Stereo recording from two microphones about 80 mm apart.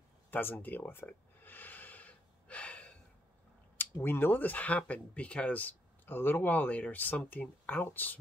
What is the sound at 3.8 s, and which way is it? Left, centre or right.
Speech, left.